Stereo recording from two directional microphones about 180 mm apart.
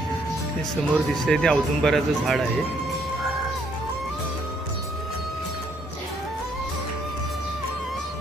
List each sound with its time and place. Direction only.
0.9 s speech: centre (ahead or behind)